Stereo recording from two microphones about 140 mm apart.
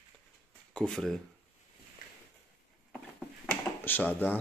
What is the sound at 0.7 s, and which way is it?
Speech, 5° left (ahead or behind).